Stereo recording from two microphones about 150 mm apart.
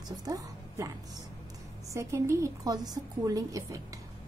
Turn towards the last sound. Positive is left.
turn(degrees=-25)  # may be behind; listen again after turning